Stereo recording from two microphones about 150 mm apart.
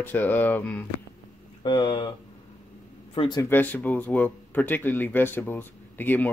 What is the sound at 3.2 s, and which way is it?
Speech, 30° left (ahead or behind).